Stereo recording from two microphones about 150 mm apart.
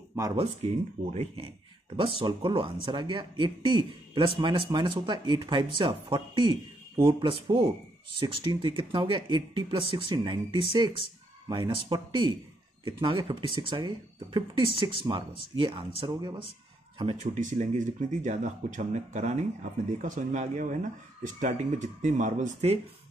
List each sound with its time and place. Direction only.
0.4 s speech: 40° right (ahead or behind)
17.3 s speech: 55° right (ahead or behind)